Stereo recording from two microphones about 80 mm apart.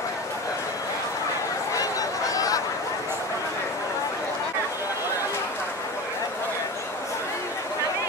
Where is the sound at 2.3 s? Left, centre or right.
Left.